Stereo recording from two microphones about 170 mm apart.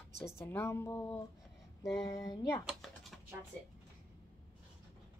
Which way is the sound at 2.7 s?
Centre (ahead or behind).